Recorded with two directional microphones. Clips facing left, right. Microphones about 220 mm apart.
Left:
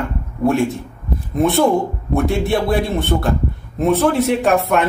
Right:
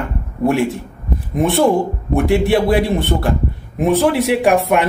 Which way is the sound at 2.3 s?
10° right (ahead or behind).